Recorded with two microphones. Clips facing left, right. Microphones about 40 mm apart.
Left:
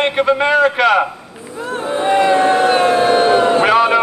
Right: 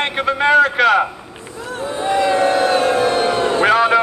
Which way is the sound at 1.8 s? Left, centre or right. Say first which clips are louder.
Left 3 dB; left.